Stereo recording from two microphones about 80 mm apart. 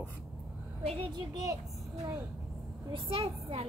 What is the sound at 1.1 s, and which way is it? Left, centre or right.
Speech, right.